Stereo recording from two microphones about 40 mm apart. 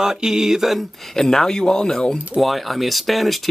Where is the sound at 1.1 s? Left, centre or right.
Centre.